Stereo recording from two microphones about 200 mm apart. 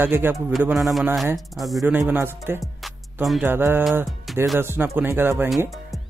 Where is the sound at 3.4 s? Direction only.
10° right (ahead or behind).